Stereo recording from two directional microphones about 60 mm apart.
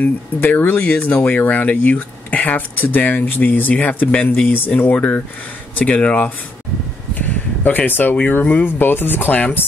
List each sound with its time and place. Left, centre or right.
0.0 s speech: left
7.2 s a sound: left
8.4 s speech: left